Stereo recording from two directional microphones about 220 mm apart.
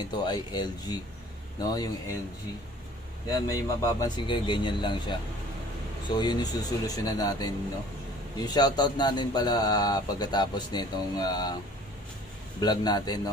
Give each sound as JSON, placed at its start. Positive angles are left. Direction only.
{"t": 0.0, "sound": "a man's voice", "side_deg": 20}
{"t": 3.3, "sound": "a man's voice", "side_deg": 15}
{"t": 8.5, "sound": "speech", "side_deg": 20}
{"t": 12.5, "sound": "speech", "side_deg": 20}